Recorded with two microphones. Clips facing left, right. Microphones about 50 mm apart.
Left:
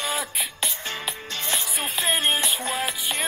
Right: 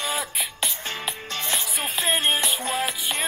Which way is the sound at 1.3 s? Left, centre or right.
Right.